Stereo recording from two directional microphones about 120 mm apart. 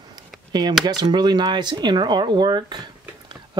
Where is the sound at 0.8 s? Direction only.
35° right (ahead or behind).